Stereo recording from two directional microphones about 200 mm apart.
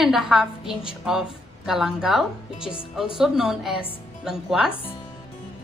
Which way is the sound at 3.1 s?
5° right (ahead or behind).